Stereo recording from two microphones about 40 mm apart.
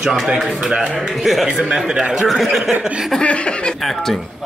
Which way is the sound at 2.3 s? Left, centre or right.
Centre.